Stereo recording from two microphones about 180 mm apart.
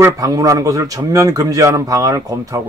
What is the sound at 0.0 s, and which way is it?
Speech, 20° right (ahead or behind).